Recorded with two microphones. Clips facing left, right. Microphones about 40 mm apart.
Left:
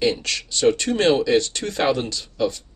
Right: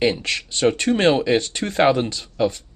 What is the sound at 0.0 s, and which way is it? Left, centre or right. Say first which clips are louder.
Speech: right 1 dB; right.